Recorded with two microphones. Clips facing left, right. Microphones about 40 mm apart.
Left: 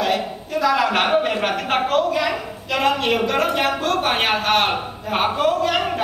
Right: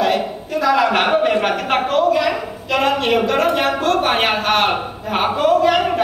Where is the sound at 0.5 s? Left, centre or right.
Centre.